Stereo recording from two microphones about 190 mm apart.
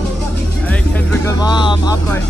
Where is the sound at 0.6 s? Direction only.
5° left (ahead or behind); by 1.9 s 25° left (ahead or behind).